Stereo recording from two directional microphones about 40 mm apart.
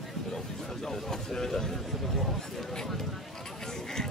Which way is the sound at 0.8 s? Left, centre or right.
Centre.